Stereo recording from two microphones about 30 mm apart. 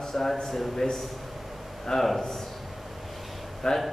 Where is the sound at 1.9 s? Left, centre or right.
Centre.